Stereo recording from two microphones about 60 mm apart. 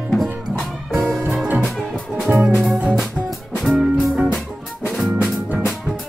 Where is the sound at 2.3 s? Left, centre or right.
Centre.